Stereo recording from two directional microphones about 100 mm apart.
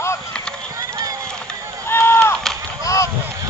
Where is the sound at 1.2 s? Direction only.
5° left (ahead or behind).